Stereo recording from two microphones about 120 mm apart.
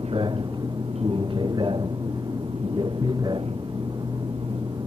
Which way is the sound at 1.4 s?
40° right (ahead or behind).